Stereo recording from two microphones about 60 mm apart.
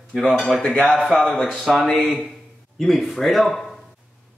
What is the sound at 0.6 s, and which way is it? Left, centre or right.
Speech, centre.